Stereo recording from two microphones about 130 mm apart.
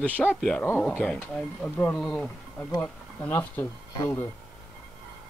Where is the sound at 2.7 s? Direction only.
15° left (ahead or behind).